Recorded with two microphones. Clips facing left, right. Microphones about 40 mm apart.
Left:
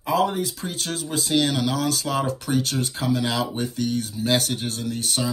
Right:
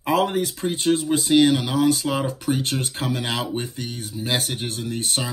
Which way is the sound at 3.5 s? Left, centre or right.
Right.